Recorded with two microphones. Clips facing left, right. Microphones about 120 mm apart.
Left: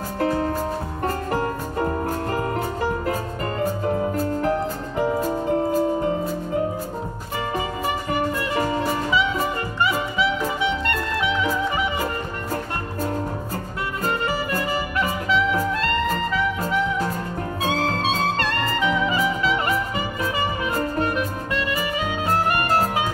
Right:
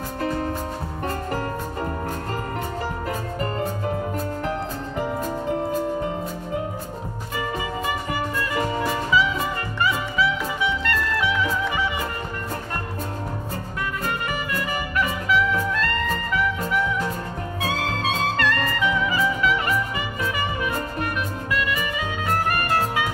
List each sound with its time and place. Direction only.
1.3 s music: 50° left (ahead or behind)
4.4 s music: 45° left (ahead or behind)
9.8 s music: 25° left (ahead or behind)
14.0 s music: 30° left (ahead or behind)
17.6 s music: 30° left (ahead or behind)
21.0 s music: 30° left (ahead or behind)